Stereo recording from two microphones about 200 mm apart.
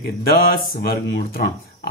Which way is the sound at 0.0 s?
50° left (ahead or behind).